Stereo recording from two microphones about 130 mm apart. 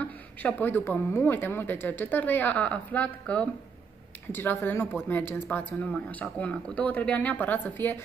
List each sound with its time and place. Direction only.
0.0 s a woman's voice: 10° left (ahead or behind)